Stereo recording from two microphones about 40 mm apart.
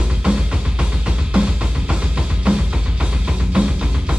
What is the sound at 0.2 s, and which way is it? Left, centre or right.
Music, right.